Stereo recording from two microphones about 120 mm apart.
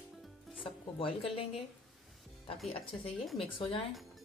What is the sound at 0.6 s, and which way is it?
Speech, 50° left (ahead or behind).